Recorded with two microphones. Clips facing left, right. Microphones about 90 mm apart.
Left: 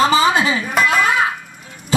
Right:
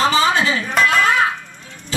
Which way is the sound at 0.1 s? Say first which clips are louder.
Left 2 dB; 10° left (ahead or behind).